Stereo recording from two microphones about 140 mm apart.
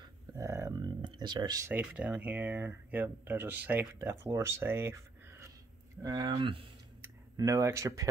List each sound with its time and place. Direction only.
0.3 s speech: 20° right (ahead or behind)
1.7 s speech: 10° right (ahead or behind); by 6.3 s 25° right (ahead or behind)
6.3 s speech: 40° right (ahead or behind)
7.0 s speech: 20° right (ahead or behind)